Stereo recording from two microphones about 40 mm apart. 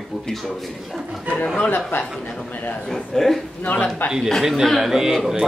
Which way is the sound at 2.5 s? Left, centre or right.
Left.